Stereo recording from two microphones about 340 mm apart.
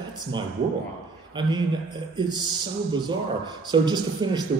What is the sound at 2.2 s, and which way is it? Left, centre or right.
A man's voice, centre.